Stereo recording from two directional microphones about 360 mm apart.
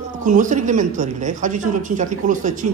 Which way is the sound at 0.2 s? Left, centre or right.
Right.